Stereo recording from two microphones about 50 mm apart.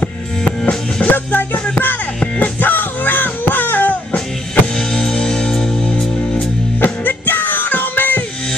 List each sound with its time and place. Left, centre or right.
0.4 s music: centre
1.0 s music: left
4.7 s music: centre
6.3 s music: left